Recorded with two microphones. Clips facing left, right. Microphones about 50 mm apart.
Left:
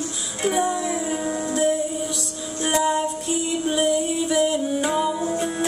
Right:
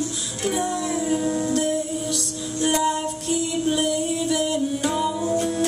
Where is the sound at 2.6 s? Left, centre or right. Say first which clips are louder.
Left 1 dB; centre.